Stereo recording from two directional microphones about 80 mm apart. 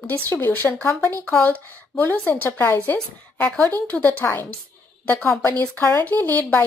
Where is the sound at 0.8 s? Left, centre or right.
Left.